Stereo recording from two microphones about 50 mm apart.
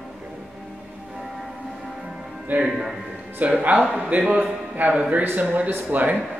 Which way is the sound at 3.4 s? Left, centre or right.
Right.